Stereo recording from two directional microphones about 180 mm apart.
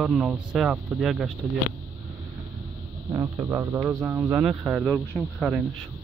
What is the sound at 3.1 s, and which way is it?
A man's voice, 15° right (ahead or behind).